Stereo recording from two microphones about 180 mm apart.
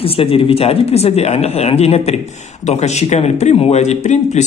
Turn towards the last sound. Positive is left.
turn(degrees=40)  # may be behind; listen again after turning